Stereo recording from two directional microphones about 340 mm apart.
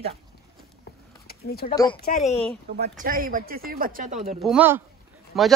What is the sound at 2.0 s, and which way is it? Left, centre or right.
Speech, left.